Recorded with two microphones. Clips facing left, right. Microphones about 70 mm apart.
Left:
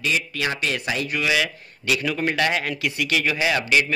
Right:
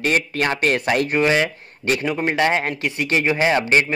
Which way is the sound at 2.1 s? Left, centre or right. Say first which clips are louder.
Right 3 dB; right.